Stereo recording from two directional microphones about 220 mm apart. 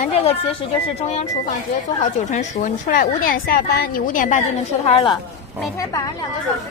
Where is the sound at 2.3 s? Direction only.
35° left (ahead or behind).